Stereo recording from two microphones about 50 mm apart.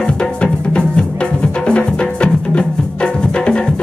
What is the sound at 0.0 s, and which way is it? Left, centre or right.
Music, centre.